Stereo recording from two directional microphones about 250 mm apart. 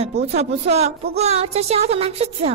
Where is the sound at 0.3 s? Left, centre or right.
Right.